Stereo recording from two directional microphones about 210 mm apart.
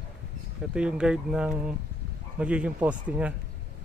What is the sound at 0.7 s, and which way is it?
Speech, 5° right (ahead or behind).